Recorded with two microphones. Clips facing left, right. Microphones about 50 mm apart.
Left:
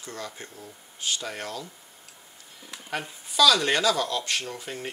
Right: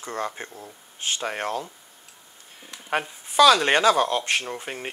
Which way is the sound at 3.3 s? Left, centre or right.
Right.